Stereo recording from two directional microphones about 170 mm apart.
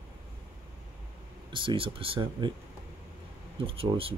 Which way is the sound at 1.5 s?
30° right (ahead or behind).